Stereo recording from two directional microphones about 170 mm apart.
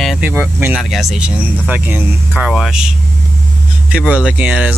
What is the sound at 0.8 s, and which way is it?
Speech, centre (ahead or behind).